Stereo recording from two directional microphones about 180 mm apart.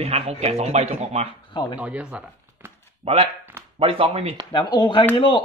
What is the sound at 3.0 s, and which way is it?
A man's voice, 35° right (ahead or behind).